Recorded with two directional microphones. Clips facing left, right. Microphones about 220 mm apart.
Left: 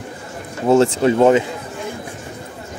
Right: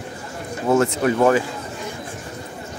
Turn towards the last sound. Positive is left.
turn(degrees=20)  # may be behind; listen again after turning